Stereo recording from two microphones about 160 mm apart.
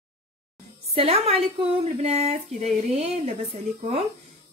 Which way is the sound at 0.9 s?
40° right (ahead or behind).